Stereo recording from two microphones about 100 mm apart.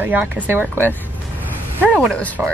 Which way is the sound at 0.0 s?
20° right (ahead or behind).